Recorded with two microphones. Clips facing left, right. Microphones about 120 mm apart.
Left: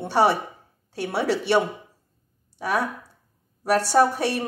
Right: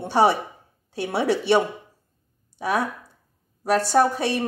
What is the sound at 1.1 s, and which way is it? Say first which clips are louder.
Speech: right 2 dB; 20° right (ahead or behind).